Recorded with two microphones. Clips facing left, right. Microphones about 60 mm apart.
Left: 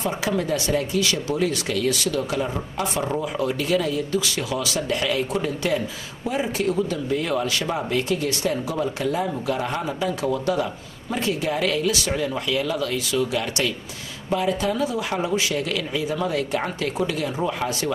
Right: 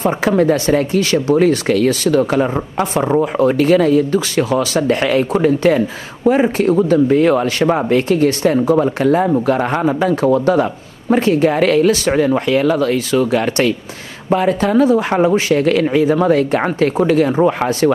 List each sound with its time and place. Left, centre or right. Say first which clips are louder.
0.0 s speech: right 10 dB; right